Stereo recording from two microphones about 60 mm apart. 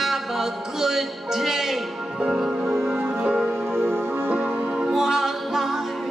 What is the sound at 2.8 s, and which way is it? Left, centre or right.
Music, right.